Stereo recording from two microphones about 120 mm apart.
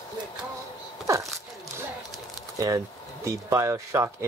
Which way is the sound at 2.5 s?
30° right (ahead or behind).